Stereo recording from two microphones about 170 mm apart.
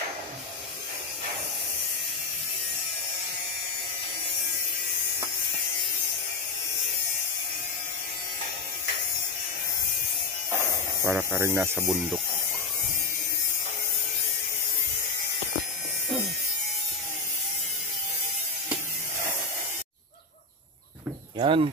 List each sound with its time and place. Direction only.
11.1 s speech: 15° right (ahead or behind)
21.4 s speech: 30° right (ahead or behind)